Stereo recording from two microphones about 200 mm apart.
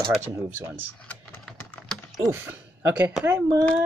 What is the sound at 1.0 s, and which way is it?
Typing, 5° left (ahead or behind).